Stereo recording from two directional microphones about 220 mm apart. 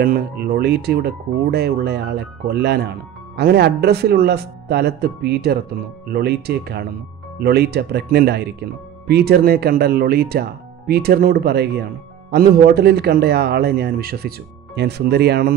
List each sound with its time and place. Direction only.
0.0 s speech: 45° right (ahead or behind)